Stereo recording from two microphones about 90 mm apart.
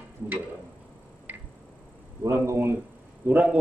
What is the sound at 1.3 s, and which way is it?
Tick, 15° right (ahead or behind).